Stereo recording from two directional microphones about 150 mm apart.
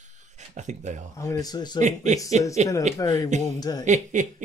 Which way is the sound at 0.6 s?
50° right (ahead or behind).